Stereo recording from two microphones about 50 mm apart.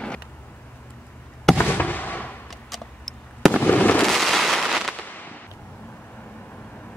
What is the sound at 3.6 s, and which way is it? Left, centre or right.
Fireworks, left.